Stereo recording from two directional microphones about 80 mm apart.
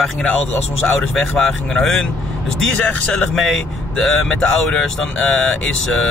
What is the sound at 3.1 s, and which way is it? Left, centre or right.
Speech, centre.